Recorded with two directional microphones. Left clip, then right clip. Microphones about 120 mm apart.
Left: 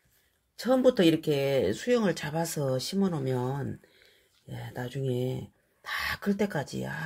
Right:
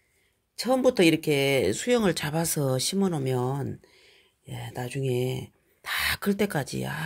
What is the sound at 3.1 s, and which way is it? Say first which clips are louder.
Speech: right 3 dB; 40° right (ahead or behind).